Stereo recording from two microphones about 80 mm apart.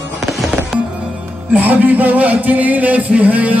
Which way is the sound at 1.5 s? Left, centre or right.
Right.